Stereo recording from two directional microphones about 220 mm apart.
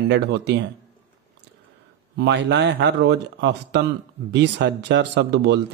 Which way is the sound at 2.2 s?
50° right (ahead or behind).